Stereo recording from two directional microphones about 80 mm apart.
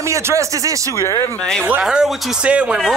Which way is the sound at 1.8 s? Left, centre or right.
Centre.